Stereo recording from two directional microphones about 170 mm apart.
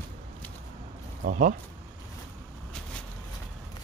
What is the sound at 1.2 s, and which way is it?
Speech, 50° right (ahead or behind).